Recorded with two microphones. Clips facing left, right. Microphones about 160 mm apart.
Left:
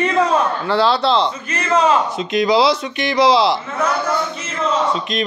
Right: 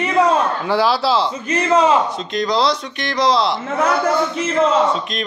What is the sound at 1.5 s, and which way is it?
Speech, 20° right (ahead or behind).